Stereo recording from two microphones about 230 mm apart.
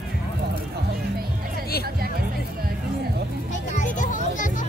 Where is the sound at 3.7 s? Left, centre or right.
Left.